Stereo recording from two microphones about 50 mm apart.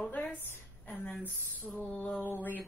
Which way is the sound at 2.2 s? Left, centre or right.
Left.